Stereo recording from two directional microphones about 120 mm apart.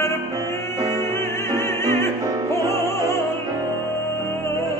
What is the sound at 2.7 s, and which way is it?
Music, 20° left (ahead or behind).